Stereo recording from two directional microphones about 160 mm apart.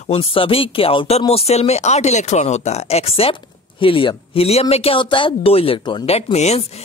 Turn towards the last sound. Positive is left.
turn(degrees=40)  # may be behind; listen again after turning